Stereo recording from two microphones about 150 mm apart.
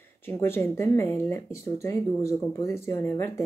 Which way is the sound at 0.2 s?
15° left (ahead or behind).